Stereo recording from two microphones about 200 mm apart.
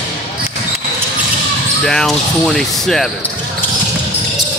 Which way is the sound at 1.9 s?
Centre (ahead or behind).